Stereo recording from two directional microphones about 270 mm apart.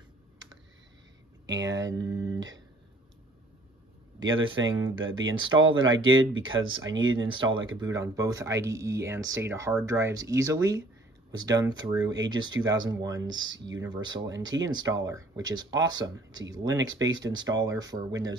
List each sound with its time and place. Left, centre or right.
1.4 s speech: centre
4.2 s speech: right
7.2 s speech: centre
7.4 s speech: right
7.8 s speech: centre
13.2 s speech: right
13.7 s speech: centre
16.8 s speech: right
17.1 s speech: centre